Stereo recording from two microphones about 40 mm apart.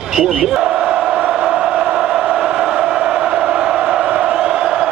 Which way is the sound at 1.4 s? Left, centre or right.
Centre.